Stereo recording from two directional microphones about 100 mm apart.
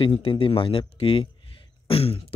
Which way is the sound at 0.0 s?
65° left (ahead or behind).